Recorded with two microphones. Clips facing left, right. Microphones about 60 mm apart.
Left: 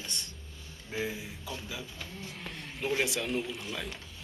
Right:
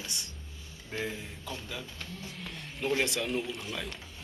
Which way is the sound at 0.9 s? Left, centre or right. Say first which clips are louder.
Left 1 dB; centre.